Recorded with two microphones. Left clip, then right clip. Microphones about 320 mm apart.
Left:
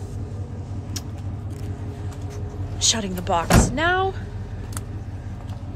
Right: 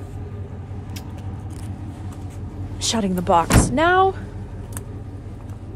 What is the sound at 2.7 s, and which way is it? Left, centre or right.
Speech, centre.